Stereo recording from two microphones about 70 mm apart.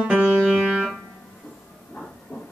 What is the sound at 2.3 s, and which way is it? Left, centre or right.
Heart murmur, centre.